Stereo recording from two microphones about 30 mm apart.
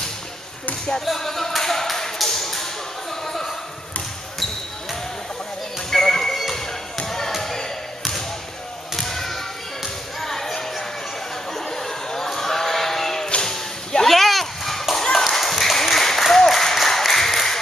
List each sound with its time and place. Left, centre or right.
1.1 s a sound: centre
5.9 s basketball bounce: centre
8.9 s basketball bounce: centre
10.2 s music: centre
11.5 s basketball bounce: centre
13.4 s music: left
14.0 s a sound: centre